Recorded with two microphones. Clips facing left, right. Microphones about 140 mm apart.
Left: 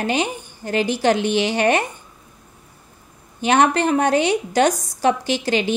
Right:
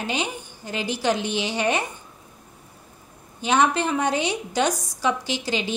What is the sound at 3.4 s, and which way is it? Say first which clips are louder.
A woman's voice: left 4 dB; 65° left (ahead or behind).